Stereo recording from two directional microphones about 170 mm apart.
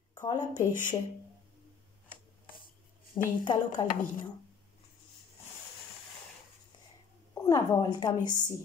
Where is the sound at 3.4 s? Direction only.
25° left (ahead or behind).